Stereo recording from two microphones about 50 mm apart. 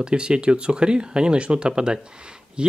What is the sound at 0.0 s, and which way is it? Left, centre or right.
Speech, centre.